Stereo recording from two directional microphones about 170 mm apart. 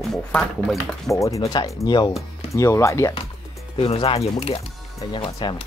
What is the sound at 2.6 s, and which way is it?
Speech, 15° left (ahead or behind).